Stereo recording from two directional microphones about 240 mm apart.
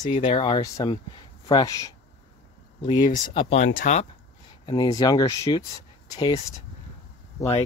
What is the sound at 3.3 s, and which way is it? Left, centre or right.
Speech, left.